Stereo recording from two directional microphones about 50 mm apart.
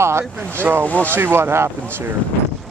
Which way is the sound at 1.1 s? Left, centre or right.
Right.